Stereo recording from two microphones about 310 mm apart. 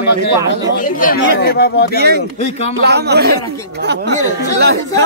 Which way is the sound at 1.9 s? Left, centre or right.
Right.